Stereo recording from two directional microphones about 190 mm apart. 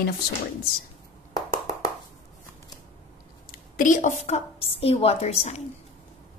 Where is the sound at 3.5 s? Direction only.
45° left (ahead or behind).